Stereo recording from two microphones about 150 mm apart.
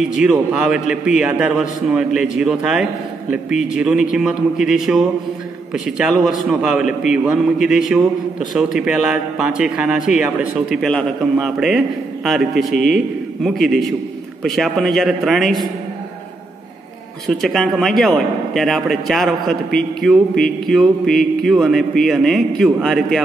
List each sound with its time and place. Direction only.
0.2 s a man's voice: 5° right (ahead or behind)
10.8 s a man's voice: 5° left (ahead or behind)
17.3 s a man's voice: 5° left (ahead or behind)